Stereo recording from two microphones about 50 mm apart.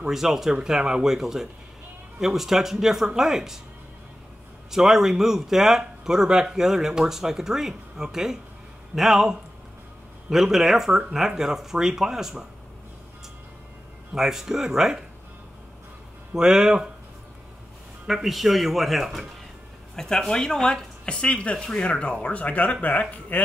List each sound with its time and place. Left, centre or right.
0.0 s speech: centre
4.6 s speech: centre
14.1 s speech: centre
16.3 s speech: centre
18.0 s speech: centre
20.0 s speech: centre; by 23.4 s left